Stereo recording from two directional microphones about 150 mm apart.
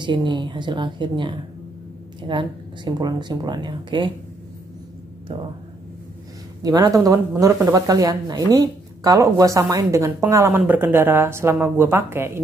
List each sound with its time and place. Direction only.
0.0 s speech: 30° right (ahead or behind)
5.3 s speech: 35° right (ahead or behind)
6.6 s speech: 25° right (ahead or behind)